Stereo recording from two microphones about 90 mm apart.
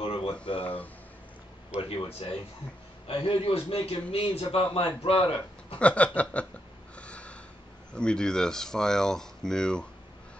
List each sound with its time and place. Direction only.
0.0 s a sound: 90° left
1.8 s a man's voice: 90° left
3.1 s a man's voice: 80° left
5.8 s speech: 15° left (ahead or behind)
7.0 s a sound: 15° left (ahead or behind)
7.9 s speech: 10° left (ahead or behind)